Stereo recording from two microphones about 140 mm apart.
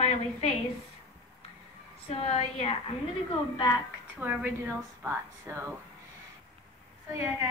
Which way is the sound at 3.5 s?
30° left (ahead or behind).